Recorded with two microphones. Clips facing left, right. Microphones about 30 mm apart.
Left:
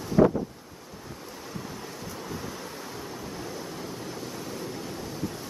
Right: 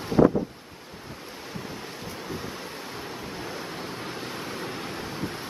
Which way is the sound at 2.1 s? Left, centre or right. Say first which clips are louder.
Right 2 dB; right.